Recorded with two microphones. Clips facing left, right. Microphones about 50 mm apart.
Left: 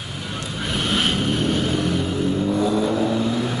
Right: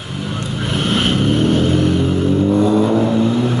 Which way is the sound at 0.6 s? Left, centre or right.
Centre.